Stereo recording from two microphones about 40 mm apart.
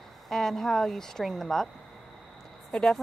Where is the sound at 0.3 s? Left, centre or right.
Centre.